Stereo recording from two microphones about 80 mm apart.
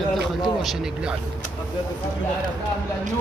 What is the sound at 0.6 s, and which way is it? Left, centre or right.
Speech, centre.